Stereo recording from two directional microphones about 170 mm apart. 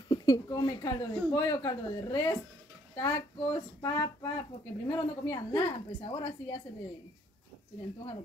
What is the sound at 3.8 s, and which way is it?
A woman's voice, 20° left (ahead or behind).